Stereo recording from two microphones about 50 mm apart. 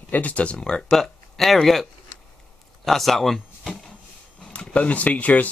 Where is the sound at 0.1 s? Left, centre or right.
Left.